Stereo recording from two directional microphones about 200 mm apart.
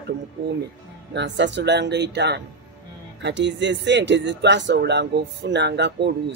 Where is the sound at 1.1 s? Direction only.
60° right (ahead or behind).